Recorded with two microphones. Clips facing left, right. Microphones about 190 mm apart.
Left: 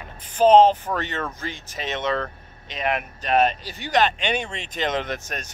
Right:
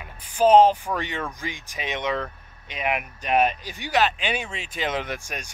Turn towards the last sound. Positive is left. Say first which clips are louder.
# left 2 dB
turn(degrees=-10)  # may be behind; listen again after turning